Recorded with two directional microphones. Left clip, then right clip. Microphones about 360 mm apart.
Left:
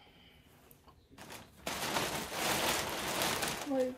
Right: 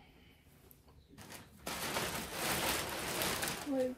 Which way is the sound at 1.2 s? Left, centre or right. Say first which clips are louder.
Left 3 dB; centre.